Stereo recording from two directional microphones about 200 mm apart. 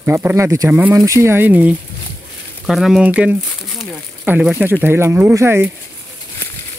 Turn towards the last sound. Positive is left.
turn(degrees=-10)  # may be behind; listen again after turning